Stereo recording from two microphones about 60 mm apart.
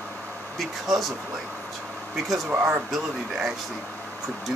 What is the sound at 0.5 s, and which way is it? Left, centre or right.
Speech, centre.